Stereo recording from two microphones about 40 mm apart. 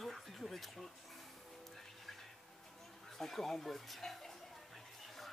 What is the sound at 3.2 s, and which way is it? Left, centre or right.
Speech, centre.